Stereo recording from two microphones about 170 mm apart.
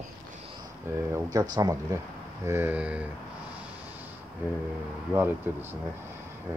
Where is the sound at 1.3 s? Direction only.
20° right (ahead or behind).